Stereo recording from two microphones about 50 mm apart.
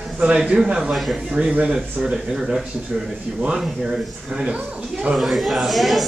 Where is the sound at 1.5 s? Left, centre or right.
Right.